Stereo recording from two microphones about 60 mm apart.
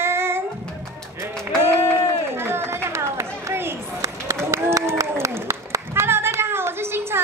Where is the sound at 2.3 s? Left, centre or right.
Right.